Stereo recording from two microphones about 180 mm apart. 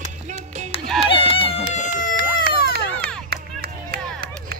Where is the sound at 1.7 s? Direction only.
45° left (ahead or behind).